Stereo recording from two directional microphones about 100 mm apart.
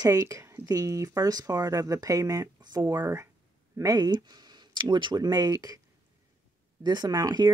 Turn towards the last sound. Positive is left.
turn(degrees=-40)  # may be behind; listen again after turning